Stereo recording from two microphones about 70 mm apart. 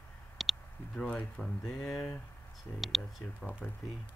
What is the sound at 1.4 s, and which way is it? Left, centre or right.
Speech, centre.